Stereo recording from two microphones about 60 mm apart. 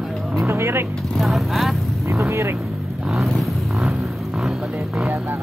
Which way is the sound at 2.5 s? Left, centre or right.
Centre.